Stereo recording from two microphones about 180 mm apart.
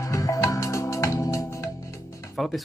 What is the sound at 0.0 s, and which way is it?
Music, 20° left (ahead or behind).